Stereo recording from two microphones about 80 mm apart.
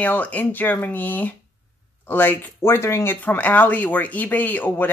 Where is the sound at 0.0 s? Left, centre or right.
Centre; by 3.2 s left.